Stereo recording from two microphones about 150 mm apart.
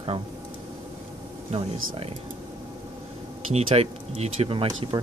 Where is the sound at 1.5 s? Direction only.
40° right (ahead or behind).